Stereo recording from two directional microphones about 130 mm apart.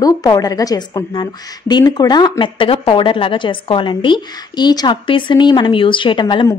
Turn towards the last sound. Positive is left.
turn(degrees=40)  # may be behind; listen again after turning